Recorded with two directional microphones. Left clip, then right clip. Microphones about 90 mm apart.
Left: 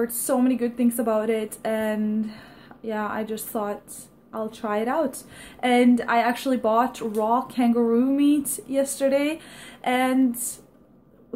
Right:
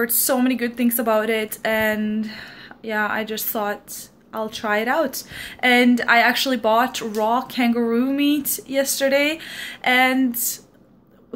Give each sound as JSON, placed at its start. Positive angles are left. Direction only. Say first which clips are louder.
{"t": 0.0, "sound": "a woman's voice", "louder": "right 3 dB", "side_deg": 20}